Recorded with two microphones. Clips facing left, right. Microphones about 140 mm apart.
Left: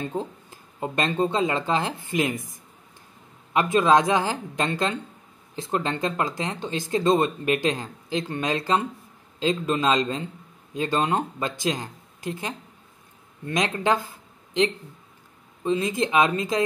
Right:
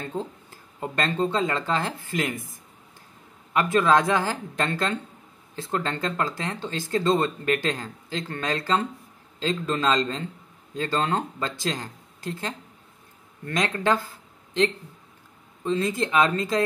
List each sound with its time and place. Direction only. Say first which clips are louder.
0.0 s speech: left 2 dB; 15° left (ahead or behind)
3.5 s speech: left 1 dB; 20° left (ahead or behind)